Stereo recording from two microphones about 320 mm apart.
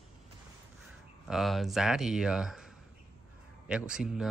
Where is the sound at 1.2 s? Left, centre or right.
Centre.